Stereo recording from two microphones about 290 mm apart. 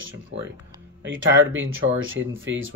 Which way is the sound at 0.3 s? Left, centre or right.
Right.